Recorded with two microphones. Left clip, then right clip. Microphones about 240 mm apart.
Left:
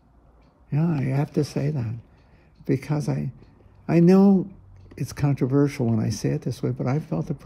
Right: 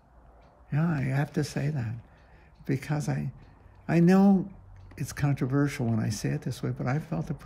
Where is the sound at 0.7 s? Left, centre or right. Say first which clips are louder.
Left 4 dB; centre.